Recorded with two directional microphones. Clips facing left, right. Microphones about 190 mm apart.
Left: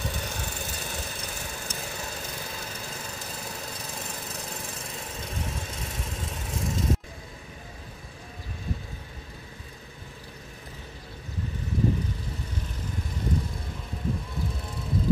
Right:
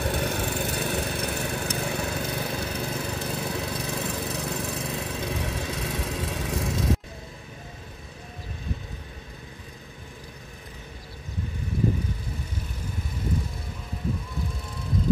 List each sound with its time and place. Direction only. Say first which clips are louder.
0.0 s lawn mower: right 8 dB; 60° right (ahead or behind)